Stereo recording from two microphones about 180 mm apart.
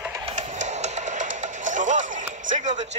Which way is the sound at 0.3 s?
40° right (ahead or behind).